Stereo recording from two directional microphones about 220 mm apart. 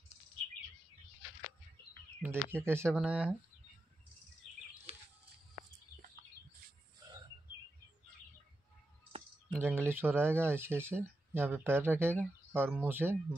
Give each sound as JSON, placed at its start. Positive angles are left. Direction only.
{"t": 2.2, "sound": "speech", "side_deg": -10}
{"t": 4.9, "sound": "a sound", "side_deg": -30}
{"t": 9.5, "sound": "speech", "side_deg": -10}